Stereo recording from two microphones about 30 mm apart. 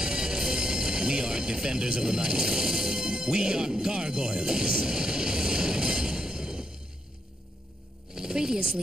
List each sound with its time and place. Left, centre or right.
0.0 s music: right
2.0 s speech: right
8.1 s a sound: right